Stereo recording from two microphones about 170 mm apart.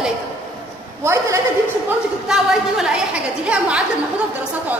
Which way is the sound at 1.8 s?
5° right (ahead or behind).